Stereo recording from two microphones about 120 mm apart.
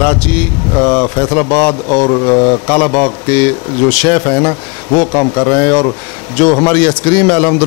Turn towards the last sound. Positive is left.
turn(degrees=15)  # may be behind; listen again after turning